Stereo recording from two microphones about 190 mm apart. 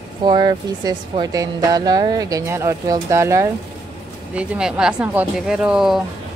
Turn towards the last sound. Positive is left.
turn(degrees=0)  # may be behind; listen again after turning